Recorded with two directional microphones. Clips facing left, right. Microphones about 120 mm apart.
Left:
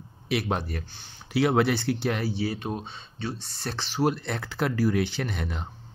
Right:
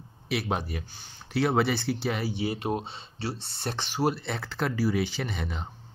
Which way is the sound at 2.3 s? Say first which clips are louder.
Right 1 dB; 20° right (ahead or behind).